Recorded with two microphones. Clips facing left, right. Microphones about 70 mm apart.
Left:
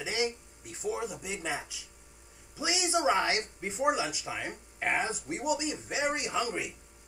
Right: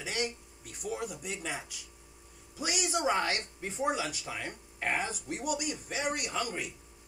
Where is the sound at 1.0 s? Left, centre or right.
Left.